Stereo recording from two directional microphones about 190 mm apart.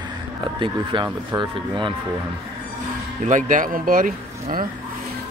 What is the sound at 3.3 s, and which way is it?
Speech, 45° right (ahead or behind).